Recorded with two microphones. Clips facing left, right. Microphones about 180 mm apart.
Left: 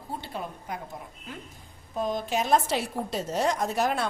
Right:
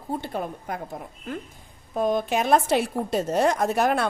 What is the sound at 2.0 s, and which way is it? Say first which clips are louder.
A woman's voice: right 5 dB; 60° right (ahead or behind).